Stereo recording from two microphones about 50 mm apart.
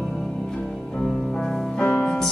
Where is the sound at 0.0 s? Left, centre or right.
Centre.